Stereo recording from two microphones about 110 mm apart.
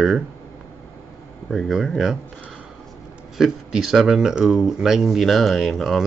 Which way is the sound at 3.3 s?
5° right (ahead or behind).